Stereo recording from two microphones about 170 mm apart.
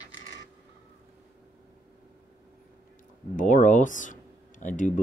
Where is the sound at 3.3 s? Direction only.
50° left (ahead or behind).